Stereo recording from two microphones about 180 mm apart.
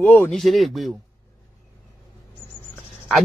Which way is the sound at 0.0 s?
10° left (ahead or behind).